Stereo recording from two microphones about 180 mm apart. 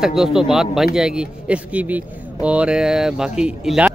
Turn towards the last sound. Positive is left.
turn(degrees=-5)  # may be behind; listen again after turning